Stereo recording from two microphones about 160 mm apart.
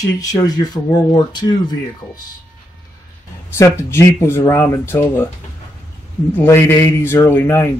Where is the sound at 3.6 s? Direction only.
15° left (ahead or behind).